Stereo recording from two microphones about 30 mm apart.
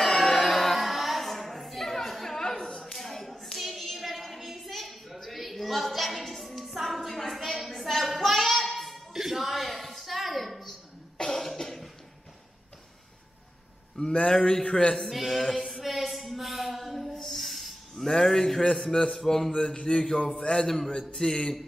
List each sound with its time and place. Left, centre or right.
0.0 s music: centre
0.7 s child singing: centre
1.2 s a sound: centre
2.9 s clapping: centre
3.5 s child singing: centre
3.8 s a sound: centre
11.1 s cough: centre
14.0 s a sound: left
14.3 s mantra: left
15.0 s a sound: centre
19.1 s a man's voice: centre
19.6 s mantra: left
20.6 s a man's voice: centre
21.2 s mantra: left